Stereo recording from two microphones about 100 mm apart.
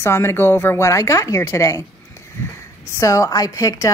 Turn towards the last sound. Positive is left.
turn(degrees=35)  # may be behind; listen again after turning